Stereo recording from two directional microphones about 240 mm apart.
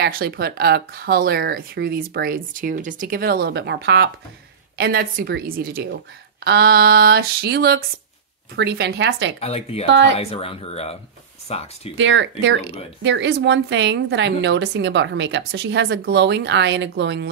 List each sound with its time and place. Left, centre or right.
0.0 s a woman's voice: right
9.4 s speech: left
9.8 s a woman's voice: right
10.1 s speech: left
11.9 s a woman's voice: right